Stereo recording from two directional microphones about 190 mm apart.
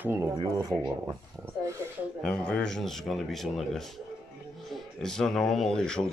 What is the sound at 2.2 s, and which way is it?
Speech, 5° left (ahead or behind).